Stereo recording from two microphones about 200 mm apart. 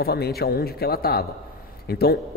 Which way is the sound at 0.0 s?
50° left (ahead or behind).